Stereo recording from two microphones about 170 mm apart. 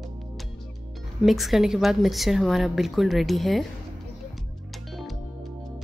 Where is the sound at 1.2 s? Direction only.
Centre (ahead or behind).